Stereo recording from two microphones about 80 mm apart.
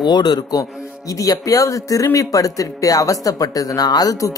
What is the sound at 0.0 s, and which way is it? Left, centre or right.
Speech, left.